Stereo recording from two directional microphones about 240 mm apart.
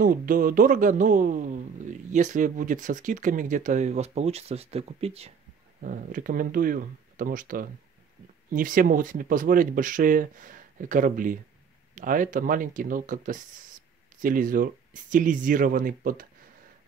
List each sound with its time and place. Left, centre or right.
0.0 s a man's voice: right